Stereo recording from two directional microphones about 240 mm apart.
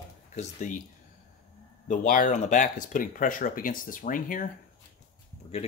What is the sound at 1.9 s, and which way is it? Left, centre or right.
Speech, left.